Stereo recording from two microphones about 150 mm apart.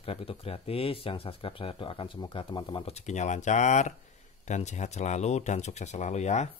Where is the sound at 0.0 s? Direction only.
40° left (ahead or behind).